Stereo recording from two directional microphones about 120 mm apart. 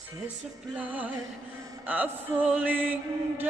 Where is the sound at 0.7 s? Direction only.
15° right (ahead or behind).